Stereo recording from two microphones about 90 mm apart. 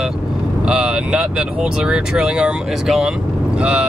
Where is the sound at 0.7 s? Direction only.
10° right (ahead or behind).